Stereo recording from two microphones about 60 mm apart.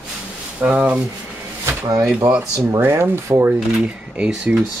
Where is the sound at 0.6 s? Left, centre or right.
Right.